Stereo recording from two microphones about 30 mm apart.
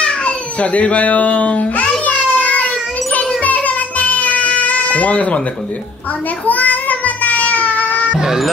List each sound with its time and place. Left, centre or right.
0.0 s baby cry: left
3.2 s music: left
6.4 s child singing: left
8.1 s speech: centre